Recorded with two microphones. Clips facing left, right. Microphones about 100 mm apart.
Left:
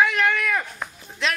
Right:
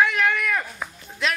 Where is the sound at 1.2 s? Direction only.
Centre (ahead or behind).